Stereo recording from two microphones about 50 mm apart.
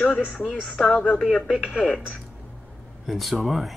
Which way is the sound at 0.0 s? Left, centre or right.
Left.